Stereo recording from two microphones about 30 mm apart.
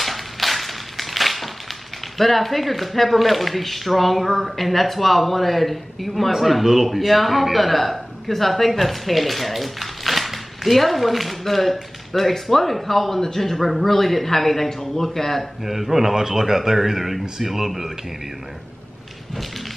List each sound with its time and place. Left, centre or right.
0.0 s a sound: centre
6.4 s a man's voice: centre
15.6 s speech: centre